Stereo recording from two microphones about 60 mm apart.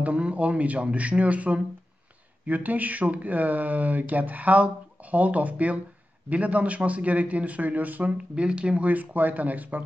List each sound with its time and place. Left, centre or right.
0.0 s a man's voice: right